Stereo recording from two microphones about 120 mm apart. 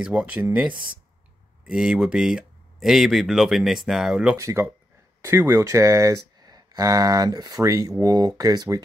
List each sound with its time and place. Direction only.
0.0 s speech: 10° right (ahead or behind)
4.4 s speech: 25° right (ahead or behind)